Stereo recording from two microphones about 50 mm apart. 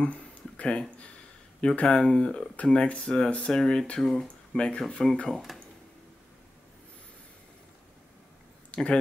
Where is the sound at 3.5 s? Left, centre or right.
Centre.